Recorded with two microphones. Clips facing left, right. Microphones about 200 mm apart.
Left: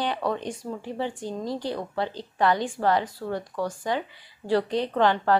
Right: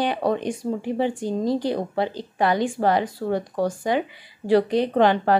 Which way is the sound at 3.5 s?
40° right (ahead or behind).